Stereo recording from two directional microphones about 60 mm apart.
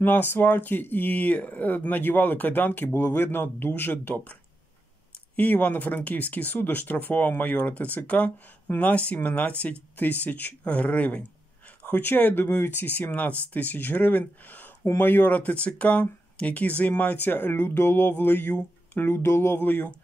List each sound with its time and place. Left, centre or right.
0.0 s speech: left
18.0 s speech: left
18.9 s speech: left
19.5 s speech: left